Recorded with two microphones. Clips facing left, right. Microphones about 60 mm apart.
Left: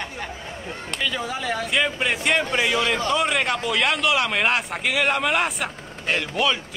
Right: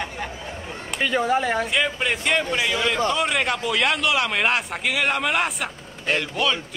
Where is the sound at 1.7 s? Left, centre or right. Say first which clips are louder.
Even; centre.